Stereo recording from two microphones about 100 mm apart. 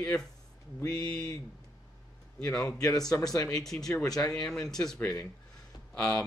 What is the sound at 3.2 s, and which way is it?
Speech, 40° left (ahead or behind).